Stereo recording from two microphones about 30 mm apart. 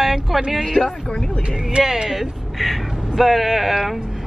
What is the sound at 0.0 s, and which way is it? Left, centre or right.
Music, centre.